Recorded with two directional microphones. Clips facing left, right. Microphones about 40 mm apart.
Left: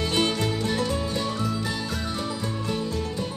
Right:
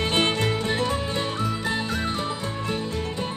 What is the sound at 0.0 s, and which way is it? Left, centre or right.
Music, right.